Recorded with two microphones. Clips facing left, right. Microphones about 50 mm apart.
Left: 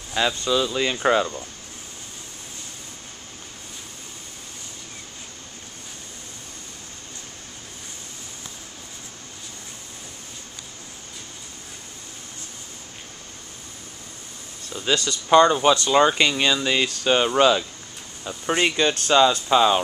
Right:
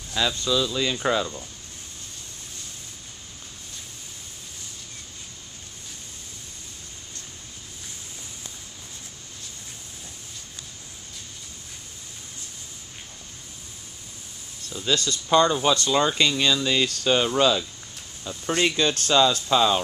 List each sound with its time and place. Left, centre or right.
0.1 s speech: left
14.7 s a sound: left
15.2 s speech: left